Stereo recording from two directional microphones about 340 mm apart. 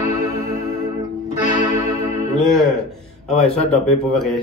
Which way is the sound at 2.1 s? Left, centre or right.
Centre.